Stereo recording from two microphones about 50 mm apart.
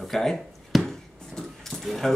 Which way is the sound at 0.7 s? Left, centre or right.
Centre.